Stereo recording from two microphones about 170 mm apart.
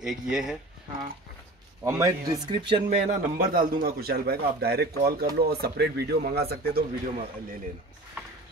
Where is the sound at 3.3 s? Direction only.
55° right (ahead or behind).